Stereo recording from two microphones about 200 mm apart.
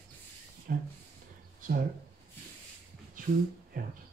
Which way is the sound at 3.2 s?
40° right (ahead or behind).